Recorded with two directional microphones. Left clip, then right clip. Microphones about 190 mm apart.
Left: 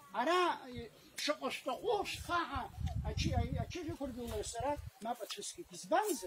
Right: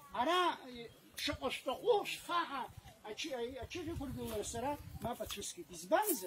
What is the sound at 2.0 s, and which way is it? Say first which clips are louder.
Speech: even; 15° right (ahead or behind).